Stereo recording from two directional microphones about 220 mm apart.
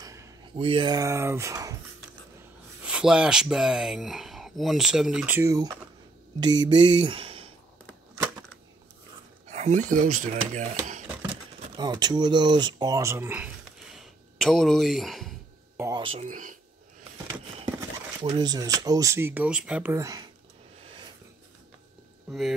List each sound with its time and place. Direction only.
0.0 s a sound: 15° right (ahead or behind)
0.6 s speech: 25° right (ahead or behind)
2.8 s speech: 5° right (ahead or behind); by 7.5 s 25° right (ahead or behind)
9.5 s speech: 30° right (ahead or behind)
11.7 s speech: 20° right (ahead or behind); by 15.3 s centre (ahead or behind)
15.8 s speech: 20° right (ahead or behind)
16.3 s speech: 35° right (ahead or behind)
17.7 s speech: 15° right (ahead or behind)
20.8 s a sound: 25° right (ahead or behind)